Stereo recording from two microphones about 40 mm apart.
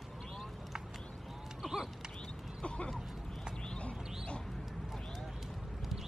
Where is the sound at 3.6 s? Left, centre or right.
Left.